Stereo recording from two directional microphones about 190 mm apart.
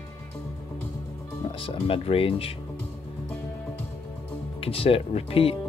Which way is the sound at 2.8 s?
5° left (ahead or behind).